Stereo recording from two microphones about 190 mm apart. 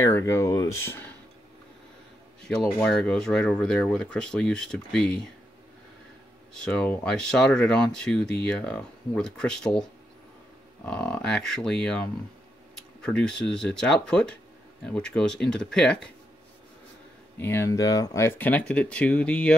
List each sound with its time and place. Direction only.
0.0 s speech: 15° left (ahead or behind)
2.4 s speech: 5° left (ahead or behind)
6.5 s speech: 5° left (ahead or behind)
10.9 s speech: 5° left (ahead or behind)
17.4 s speech: 10° left (ahead or behind)